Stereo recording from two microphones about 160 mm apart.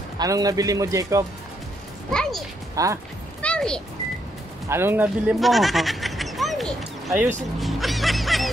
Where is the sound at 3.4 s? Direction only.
5° left (ahead or behind).